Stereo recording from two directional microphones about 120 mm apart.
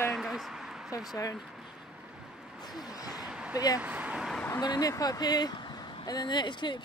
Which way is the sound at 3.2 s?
10° right (ahead or behind).